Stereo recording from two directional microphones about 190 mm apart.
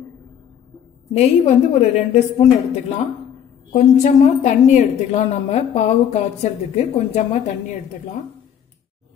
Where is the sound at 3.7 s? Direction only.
40° left (ahead or behind).